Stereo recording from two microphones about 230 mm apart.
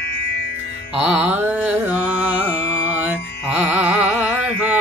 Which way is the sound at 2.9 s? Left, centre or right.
Centre.